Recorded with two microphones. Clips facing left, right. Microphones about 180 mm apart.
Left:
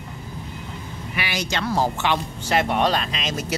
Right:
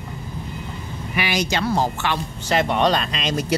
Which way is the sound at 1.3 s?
10° right (ahead or behind).